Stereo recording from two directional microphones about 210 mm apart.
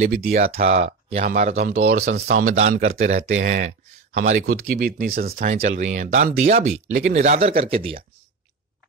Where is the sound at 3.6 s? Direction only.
55° right (ahead or behind).